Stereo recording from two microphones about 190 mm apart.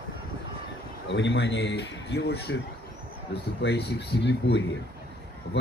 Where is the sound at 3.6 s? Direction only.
60° left (ahead or behind).